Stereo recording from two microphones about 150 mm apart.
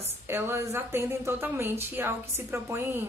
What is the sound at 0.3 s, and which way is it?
A woman's voice, 15° right (ahead or behind).